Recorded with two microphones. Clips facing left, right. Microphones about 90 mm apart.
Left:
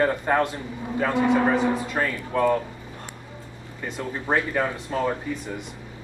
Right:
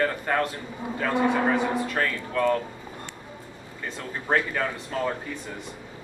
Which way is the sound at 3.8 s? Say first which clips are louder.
Left 3 dB; 20° left (ahead or behind).